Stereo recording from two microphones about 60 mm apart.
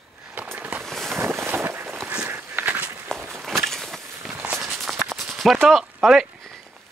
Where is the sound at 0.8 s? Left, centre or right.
Centre.